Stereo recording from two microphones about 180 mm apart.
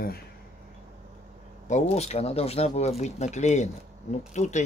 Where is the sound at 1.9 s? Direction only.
35° left (ahead or behind).